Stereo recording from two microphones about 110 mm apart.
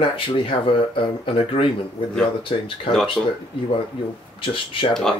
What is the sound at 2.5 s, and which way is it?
Speech, 50° left (ahead or behind).